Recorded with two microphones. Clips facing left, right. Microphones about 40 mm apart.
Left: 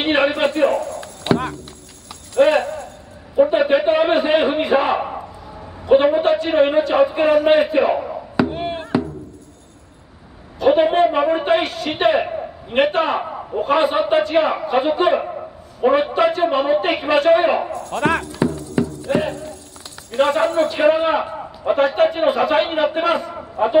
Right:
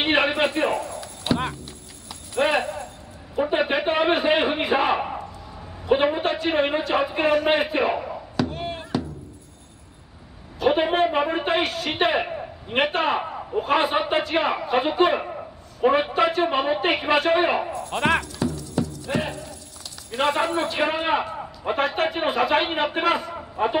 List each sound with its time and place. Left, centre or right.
0.0 s a man's voice: centre
0.7 s speech: centre
1.0 s horse: left
2.3 s a sound: centre
3.4 s a man's voice: centre
8.4 s chop: left
10.6 s a man's voice: centre
17.6 s speech: centre
18.2 s music: left
20.2 s a man's voice: centre